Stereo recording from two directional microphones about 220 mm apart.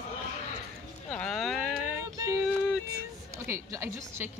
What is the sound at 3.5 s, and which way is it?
Speech, 15° right (ahead or behind).